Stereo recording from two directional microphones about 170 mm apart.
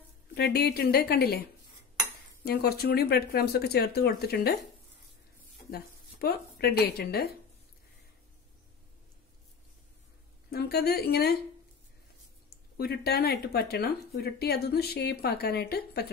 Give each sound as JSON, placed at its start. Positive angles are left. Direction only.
{"t": 0.3, "sound": "speech", "side_deg": 70}
{"t": 2.4, "sound": "speech", "side_deg": 65}
{"t": 5.7, "sound": "speech", "side_deg": 70}
{"t": 10.5, "sound": "speech", "side_deg": 70}
{"t": 12.4, "sound": "speech", "side_deg": 65}